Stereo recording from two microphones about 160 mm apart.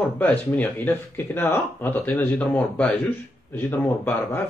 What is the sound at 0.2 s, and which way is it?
Speech, 10° left (ahead or behind).